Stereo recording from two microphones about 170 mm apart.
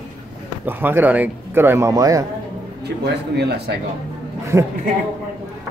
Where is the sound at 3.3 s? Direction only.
75° right (ahead or behind).